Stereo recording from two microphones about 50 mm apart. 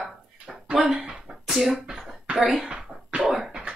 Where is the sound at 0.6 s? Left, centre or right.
Right.